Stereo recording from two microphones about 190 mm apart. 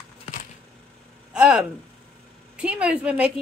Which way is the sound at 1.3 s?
5° right (ahead or behind).